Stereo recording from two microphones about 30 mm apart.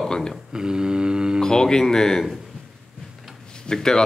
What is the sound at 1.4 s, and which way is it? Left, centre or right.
Speech, left.